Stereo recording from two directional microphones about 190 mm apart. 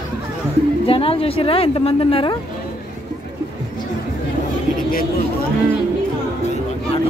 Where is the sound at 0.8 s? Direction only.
30° left (ahead or behind).